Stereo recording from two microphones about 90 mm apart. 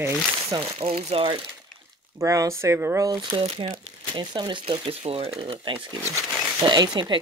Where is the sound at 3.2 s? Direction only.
70° right (ahead or behind); by 5.8 s 85° right.